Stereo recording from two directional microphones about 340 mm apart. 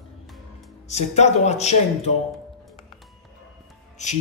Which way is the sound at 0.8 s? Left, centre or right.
Centre.